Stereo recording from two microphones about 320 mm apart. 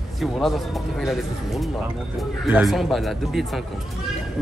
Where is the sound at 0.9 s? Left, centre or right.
Centre.